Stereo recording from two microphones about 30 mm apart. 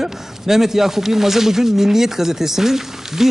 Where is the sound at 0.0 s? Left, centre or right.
Centre.